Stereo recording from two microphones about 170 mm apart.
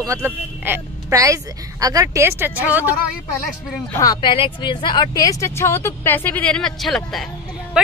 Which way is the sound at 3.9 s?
20° left (ahead or behind).